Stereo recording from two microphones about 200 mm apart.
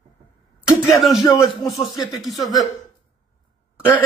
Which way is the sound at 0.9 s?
Centre (ahead or behind).